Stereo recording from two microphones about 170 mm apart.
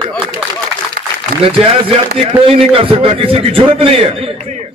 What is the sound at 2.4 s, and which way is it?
A man's voice, 35° right (ahead or behind).